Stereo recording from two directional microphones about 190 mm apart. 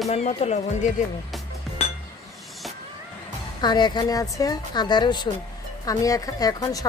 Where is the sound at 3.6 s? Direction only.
20° left (ahead or behind).